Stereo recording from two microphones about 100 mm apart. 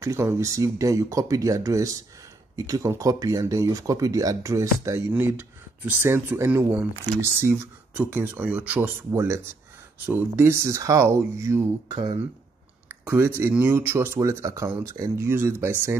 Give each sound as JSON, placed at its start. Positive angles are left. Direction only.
{"t": 0.0, "sound": "speech", "side_deg": -25}
{"t": 9.1, "sound": "speech", "side_deg": -25}
{"t": 12.8, "sound": "a sound", "side_deg": -25}
{"t": 13.4, "sound": "speech", "side_deg": -20}